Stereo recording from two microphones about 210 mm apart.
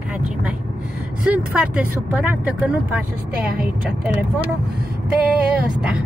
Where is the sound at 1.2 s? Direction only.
5° right (ahead or behind).